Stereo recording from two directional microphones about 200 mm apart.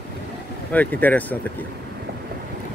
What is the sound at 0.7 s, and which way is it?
Speech, 10° left (ahead or behind).